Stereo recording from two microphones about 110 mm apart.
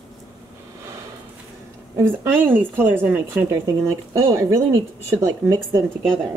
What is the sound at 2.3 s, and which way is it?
A woman's voice, 20° right (ahead or behind).